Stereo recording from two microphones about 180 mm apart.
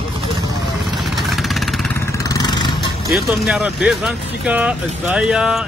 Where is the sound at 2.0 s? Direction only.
15° left (ahead or behind).